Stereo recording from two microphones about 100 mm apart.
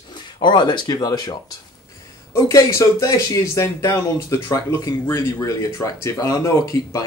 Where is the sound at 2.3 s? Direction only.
35° left (ahead or behind).